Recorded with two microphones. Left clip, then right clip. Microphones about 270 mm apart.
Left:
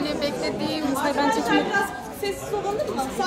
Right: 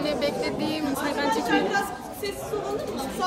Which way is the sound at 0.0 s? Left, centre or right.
Centre.